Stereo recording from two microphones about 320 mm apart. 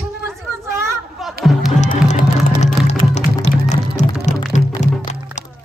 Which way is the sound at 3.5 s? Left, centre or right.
Centre.